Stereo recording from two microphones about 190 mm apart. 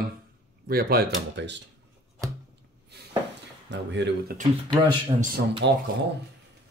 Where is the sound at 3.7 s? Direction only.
65° right (ahead or behind).